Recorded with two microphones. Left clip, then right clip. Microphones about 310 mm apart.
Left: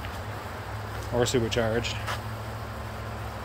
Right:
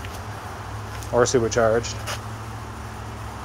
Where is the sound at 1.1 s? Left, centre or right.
Centre.